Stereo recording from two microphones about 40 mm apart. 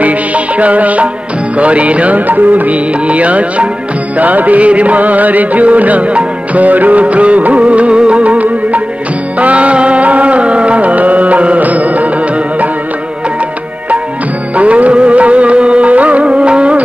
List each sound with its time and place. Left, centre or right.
0.0 s music: right
14.5 s music: right